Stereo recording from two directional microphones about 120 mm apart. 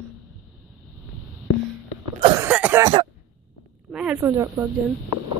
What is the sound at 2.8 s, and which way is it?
Speech, 35° right (ahead or behind).